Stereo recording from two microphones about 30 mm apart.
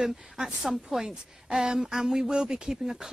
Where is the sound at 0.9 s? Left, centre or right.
Centre.